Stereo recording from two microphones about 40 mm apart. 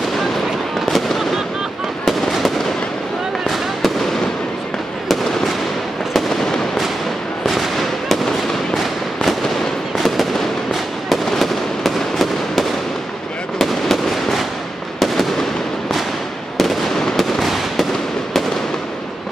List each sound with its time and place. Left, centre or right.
0.8 s fireworks: centre
5.0 s fireworks: centre
7.4 s fireworks: centre
17.0 s fireworks: centre